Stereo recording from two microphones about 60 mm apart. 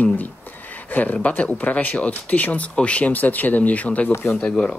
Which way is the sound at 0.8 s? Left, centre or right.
Left.